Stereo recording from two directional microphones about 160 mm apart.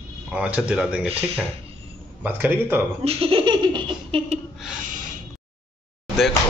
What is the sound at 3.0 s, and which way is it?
Laughter, 40° right (ahead or behind).